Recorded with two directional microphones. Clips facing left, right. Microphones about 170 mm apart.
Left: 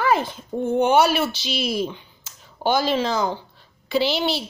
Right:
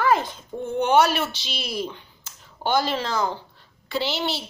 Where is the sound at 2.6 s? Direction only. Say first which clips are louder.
Left 3 dB; 10° left (ahead or behind).